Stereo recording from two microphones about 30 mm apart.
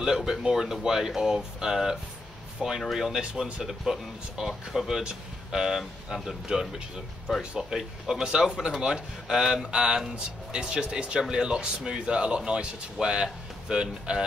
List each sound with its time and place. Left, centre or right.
0.0 s speech: centre
6.5 s speech: right
7.7 s speech: centre
8.5 s speech: centre
8.8 s speech: right